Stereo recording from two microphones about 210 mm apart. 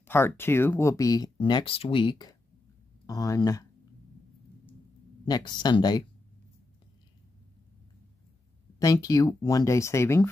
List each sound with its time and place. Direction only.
0.0 s speech: 10° left (ahead or behind)
5.2 s speech: 20° left (ahead or behind)
8.7 s speech: 15° left (ahead or behind)